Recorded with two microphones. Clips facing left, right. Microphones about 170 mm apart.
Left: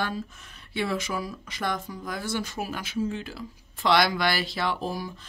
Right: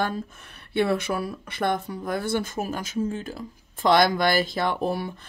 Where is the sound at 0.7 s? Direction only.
60° right (ahead or behind).